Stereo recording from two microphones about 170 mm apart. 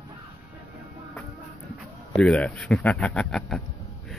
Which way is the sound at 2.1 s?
5° left (ahead or behind).